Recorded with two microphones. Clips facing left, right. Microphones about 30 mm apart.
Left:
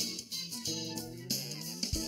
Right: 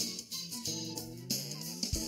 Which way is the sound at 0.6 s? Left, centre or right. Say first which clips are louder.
Left 1 dB; left.